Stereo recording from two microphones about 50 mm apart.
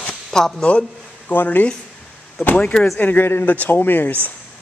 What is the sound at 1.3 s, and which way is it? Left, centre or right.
Speech, left.